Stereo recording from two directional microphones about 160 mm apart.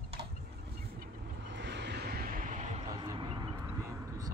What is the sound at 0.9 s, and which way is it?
Vehicle, 80° right.